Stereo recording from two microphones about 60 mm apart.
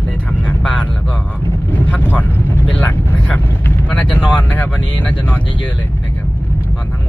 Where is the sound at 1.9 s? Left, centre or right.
Left.